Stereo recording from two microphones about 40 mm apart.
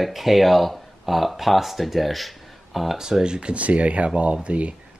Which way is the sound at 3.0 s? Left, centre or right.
Centre.